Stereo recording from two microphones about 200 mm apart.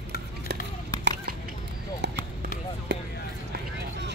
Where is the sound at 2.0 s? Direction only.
55° right (ahead or behind).